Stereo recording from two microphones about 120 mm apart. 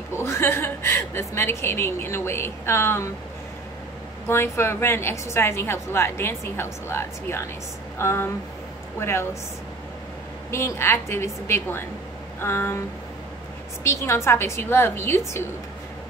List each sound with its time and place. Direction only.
0.1 s a woman's voice: 20° left (ahead or behind)
4.3 s a woman's voice: 20° left (ahead or behind)
10.5 s a woman's voice: 20° left (ahead or behind)
13.8 s a woman's voice: 25° left (ahead or behind)